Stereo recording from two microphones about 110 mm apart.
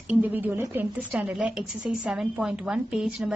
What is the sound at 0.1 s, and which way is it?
A woman's voice, 15° right (ahead or behind).